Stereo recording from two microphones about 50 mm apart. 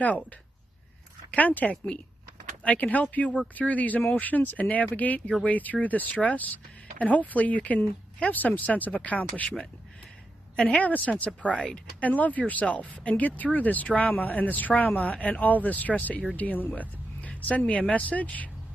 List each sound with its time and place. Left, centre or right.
1.3 s speech: left
10.5 s a woman's voice: centre
10.8 s speech: left